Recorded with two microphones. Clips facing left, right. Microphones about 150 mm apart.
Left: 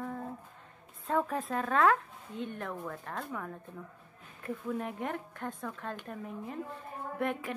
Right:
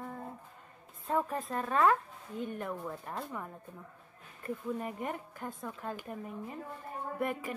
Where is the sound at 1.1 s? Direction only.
Centre (ahead or behind).